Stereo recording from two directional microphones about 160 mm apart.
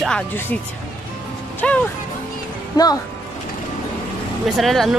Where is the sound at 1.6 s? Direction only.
10° left (ahead or behind).